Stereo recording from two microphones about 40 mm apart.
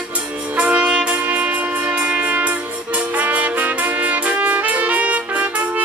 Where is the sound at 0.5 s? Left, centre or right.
Right.